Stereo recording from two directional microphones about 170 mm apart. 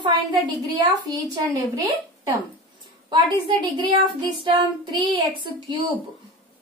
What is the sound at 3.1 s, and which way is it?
A woman's voice, 25° right (ahead or behind).